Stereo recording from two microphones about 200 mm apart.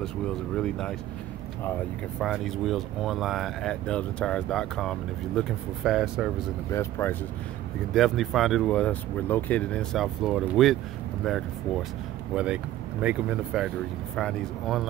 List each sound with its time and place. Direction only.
0.6 s speech: 5° left (ahead or behind)
6.7 s speech: 10° left (ahead or behind)
7.9 s speech: centre (ahead or behind)
13.0 s speech: 5° right (ahead or behind)